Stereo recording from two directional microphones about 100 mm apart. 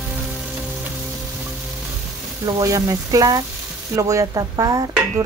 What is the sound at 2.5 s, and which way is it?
A woman's voice, 35° right (ahead or behind).